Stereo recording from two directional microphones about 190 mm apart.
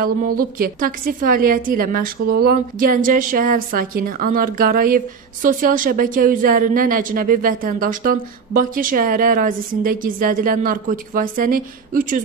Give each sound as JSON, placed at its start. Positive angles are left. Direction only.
{"t": 0.0, "sound": "a woman's voice", "side_deg": -50}